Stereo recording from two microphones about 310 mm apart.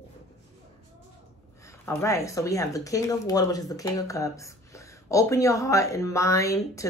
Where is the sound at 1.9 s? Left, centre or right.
Centre.